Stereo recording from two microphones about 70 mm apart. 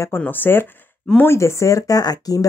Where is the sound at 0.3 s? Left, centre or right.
Left.